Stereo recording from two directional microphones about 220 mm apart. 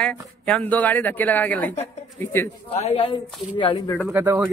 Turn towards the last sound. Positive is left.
turn(degrees=-10)  # may be behind; listen again after turning